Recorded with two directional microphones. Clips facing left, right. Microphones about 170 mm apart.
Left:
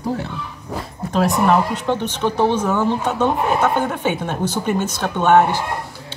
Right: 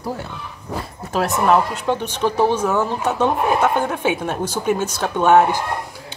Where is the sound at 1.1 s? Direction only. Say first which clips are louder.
Left 1 dB; centre (ahead or behind).